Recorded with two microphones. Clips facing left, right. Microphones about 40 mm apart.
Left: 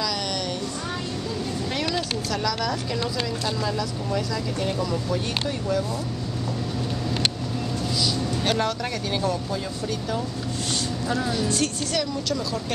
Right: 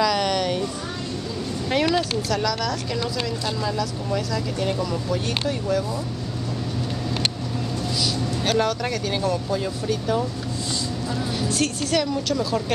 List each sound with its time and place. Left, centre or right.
0.0 s a sound: centre
1.7 s vehicle: centre
2.3 s speech: centre
8.0 s vehicle: centre
9.2 s speech: centre
11.3 s speech: centre